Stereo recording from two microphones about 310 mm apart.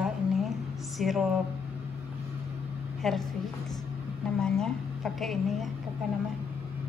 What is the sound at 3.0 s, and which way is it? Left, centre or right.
Speech, centre.